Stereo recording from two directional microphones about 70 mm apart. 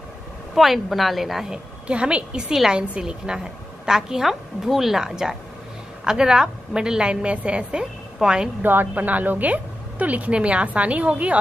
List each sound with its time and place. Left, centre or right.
0.6 s a woman's voice: centre
8.6 s a woman's voice: right